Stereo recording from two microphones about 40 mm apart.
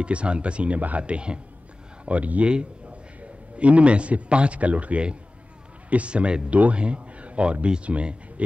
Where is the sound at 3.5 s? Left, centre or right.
Right.